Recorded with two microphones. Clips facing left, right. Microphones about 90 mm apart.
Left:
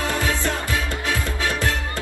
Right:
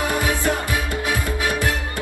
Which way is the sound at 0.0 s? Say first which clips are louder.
Right 2 dB; 15° right (ahead or behind).